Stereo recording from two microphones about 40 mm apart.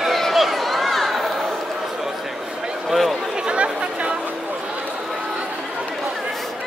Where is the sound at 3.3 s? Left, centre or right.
Right.